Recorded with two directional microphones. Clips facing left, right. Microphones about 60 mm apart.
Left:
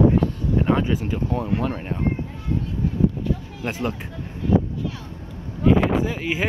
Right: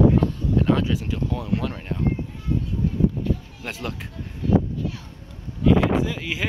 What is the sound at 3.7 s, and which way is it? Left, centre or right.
Speech, centre.